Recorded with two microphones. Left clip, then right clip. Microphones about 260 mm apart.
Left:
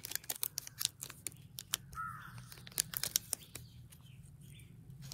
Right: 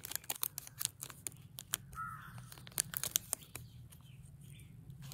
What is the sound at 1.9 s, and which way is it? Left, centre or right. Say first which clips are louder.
Crow: left 1 dB; centre.